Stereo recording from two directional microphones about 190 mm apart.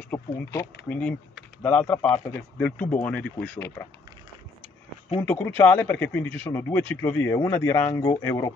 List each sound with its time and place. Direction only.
0.1 s speech: 10° left (ahead or behind)
5.2 s speech: 10° left (ahead or behind)